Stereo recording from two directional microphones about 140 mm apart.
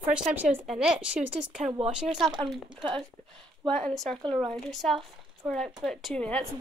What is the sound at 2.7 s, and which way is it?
Speech, 35° right (ahead or behind).